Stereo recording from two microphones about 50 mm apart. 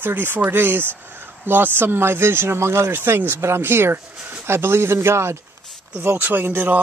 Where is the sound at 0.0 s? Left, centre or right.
Right.